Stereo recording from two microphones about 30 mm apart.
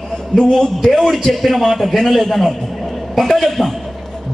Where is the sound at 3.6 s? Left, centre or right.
Centre.